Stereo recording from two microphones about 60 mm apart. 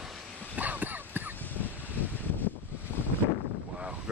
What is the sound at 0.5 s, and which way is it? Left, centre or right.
Dog, right.